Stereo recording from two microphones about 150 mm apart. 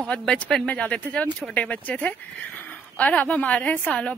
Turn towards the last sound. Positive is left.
turn(degrees=10)  # may be behind; listen again after turning